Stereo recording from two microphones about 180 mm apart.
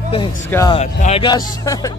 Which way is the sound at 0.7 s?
35° left (ahead or behind).